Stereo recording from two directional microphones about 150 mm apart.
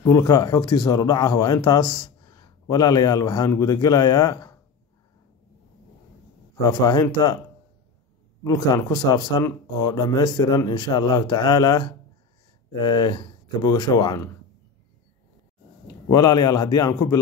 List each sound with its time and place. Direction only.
0.1 s speech: 25° left (ahead or behind)
6.5 s speech: 25° left (ahead or behind)
8.5 s speech: 25° left (ahead or behind)
16.1 s speech: 25° left (ahead or behind)